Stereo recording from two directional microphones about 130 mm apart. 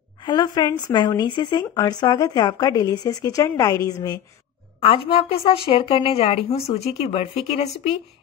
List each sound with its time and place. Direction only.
0.2 s speech: 35° left (ahead or behind)
4.7 s a woman's voice: 45° left (ahead or behind)